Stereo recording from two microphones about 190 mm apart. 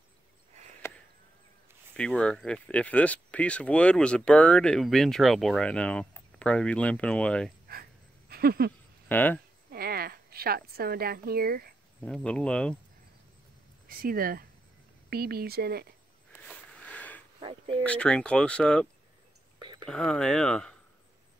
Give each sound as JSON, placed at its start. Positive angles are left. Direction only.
{"t": 2.0, "sound": "speech", "side_deg": 5}
{"t": 8.3, "sound": "a sound", "side_deg": -55}
{"t": 9.1, "sound": "speech", "side_deg": 10}
{"t": 9.7, "sound": "a woman's voice", "side_deg": -55}
{"t": 12.0, "sound": "speech", "side_deg": 5}
{"t": 13.8, "sound": "speech", "side_deg": -50}
{"t": 16.3, "sound": "sniff", "side_deg": 10}
{"t": 17.4, "sound": "a sound", "side_deg": -30}
{"t": 17.8, "sound": "speech", "side_deg": 5}
{"t": 19.6, "sound": "a sound", "side_deg": -25}
{"t": 19.9, "sound": "speech", "side_deg": 5}